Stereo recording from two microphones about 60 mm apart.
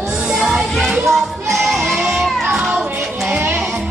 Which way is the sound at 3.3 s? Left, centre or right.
Right.